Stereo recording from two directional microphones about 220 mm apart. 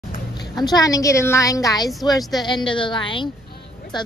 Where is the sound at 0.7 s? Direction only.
15° left (ahead or behind).